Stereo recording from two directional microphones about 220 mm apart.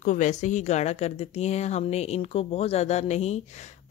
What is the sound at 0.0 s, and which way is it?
Speech, 35° left (ahead or behind).